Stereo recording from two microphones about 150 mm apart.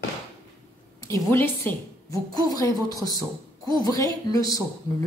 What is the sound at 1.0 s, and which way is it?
A woman's voice, 20° left (ahead or behind).